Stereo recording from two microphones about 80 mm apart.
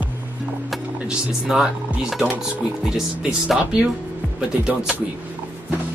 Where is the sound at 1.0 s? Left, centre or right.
Centre.